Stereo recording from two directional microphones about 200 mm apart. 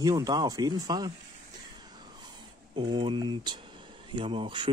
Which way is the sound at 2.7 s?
25° right (ahead or behind).